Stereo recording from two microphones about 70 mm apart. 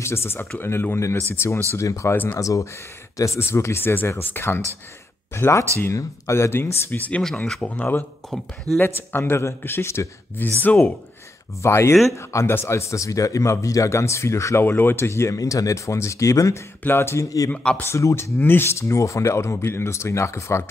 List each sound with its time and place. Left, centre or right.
0.0 s speech: left
5.3 s speech: left
6.5 s speech: left
7.2 s speech: centre
7.6 s speech: left
8.7 s speech: right
9.1 s speech: left
11.6 s speech: left
15.3 s speech: left
16.8 s speech: left
17.5 s speech: left
17.8 s speech: left
18.4 s speech: left